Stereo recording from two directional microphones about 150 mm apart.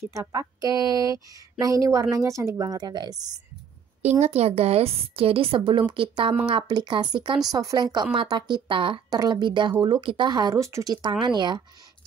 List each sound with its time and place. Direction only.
0.0 s speech: 20° right (ahead or behind)
4.2 s a woman's voice: 45° right (ahead or behind); by 11.6 s 30° right (ahead or behind)